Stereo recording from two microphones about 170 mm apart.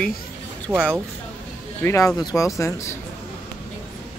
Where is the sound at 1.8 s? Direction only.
10° left (ahead or behind).